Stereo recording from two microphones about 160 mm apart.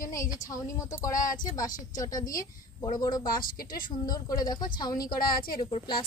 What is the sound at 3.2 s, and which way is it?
Speech, 65° left (ahead or behind).